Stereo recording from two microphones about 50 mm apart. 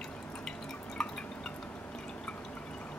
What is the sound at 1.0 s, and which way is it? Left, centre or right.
Drip, centre.